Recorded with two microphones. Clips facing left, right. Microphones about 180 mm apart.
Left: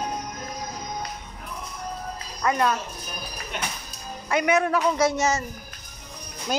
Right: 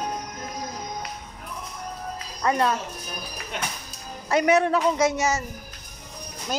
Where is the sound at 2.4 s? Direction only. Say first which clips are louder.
Even; 30° right (ahead or behind).